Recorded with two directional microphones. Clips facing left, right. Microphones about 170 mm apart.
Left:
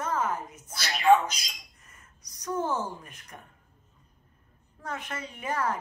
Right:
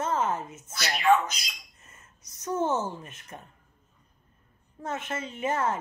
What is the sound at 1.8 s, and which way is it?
Speech, 25° right (ahead or behind).